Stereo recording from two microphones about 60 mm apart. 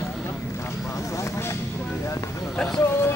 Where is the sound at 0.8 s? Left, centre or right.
Left.